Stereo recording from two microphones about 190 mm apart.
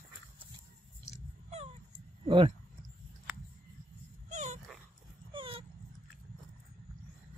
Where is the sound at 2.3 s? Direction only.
25° right (ahead or behind).